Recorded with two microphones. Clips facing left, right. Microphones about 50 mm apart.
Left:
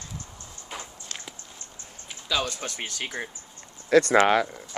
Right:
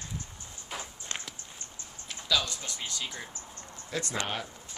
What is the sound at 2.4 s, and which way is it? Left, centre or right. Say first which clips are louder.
Speech: left 6 dB; left.